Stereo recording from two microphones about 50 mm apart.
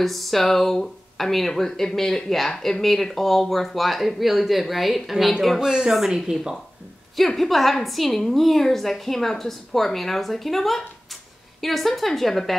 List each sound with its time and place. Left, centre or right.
0.0 s speech: centre
5.6 s speech: centre
7.2 s speech: centre